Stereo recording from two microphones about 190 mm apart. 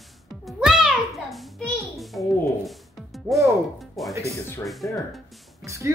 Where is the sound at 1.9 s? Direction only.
Centre (ahead or behind).